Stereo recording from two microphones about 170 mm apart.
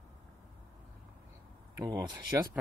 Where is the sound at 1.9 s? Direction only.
20° right (ahead or behind).